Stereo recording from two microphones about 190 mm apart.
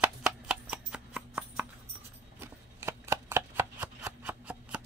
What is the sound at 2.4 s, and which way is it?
Shuffling cards, 15° right (ahead or behind).